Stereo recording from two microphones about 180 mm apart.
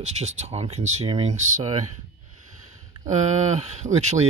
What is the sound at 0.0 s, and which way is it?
Speech, 40° right (ahead or behind).